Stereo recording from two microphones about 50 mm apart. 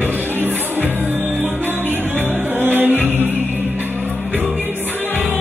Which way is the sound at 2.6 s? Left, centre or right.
Right.